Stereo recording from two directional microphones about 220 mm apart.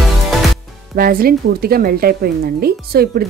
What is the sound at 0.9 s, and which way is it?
Speech, 40° right (ahead or behind).